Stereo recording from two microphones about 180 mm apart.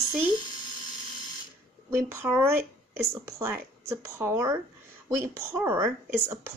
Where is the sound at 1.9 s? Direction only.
15° right (ahead or behind).